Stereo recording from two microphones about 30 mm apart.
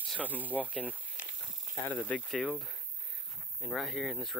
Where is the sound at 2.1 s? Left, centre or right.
Left.